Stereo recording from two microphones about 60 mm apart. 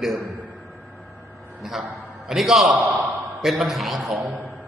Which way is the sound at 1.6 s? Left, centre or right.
Centre.